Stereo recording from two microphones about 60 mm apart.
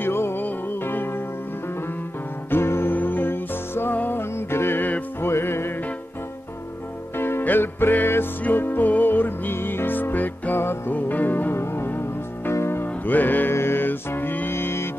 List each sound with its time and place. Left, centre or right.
0.0 s music: left
2.5 s music: left
4.2 s music: left
7.2 s music: left
11.5 s music: left
12.8 s music: left